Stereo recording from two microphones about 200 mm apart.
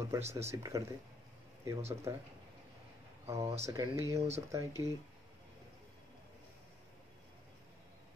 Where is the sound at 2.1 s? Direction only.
15° right (ahead or behind).